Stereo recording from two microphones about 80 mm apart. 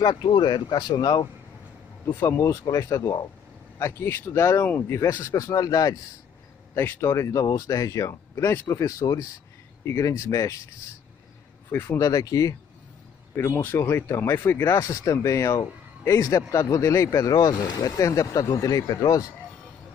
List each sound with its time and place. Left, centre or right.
0.0 s speech: left
2.1 s speech: left
4.0 s speech: left
6.7 s speech: left
11.7 s speech: left
12.0 s speech: left
13.3 s speech: left
14.7 s speech: left
17.1 s speech: left